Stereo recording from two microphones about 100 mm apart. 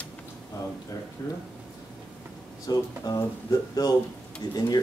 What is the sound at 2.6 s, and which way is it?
Speech, 40° left (ahead or behind).